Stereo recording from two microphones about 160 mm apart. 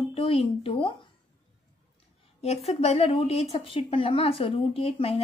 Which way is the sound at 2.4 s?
40° left (ahead or behind).